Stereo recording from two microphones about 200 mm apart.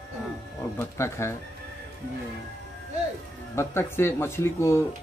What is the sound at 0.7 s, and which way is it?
Speech, 15° left (ahead or behind).